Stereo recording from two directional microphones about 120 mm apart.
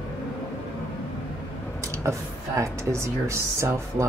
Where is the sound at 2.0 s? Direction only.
25° right (ahead or behind).